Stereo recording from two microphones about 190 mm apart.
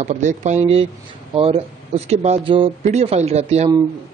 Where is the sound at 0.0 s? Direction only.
40° right (ahead or behind).